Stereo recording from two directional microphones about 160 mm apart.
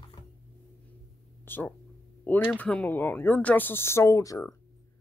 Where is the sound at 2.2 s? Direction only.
10° left (ahead or behind).